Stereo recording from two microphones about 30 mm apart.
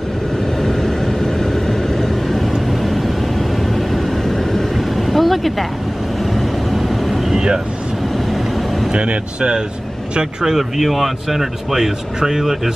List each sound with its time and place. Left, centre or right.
0.6 s vehicle: centre
2.8 s vehicle: centre
7.3 s vehicle: right
8.9 s speech: right
10.4 s speech: centre